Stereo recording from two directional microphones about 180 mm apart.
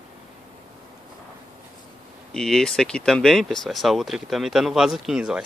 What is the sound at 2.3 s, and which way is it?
Speech, 5° left (ahead or behind).